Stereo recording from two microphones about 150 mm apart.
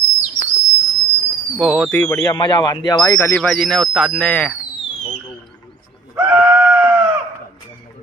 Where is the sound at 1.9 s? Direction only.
20° left (ahead or behind).